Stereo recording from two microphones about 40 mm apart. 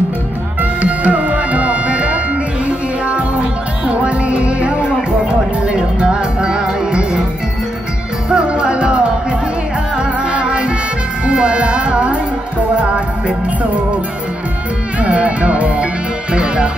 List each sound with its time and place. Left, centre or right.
0.6 s music: right
8.3 s music: right
15.0 s music: right